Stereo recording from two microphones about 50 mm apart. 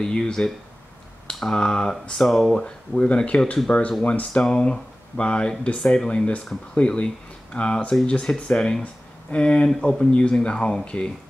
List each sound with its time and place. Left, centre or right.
0.0 s speech: centre
3.0 s speech: left